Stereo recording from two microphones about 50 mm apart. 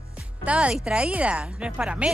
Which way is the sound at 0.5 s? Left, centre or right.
Right.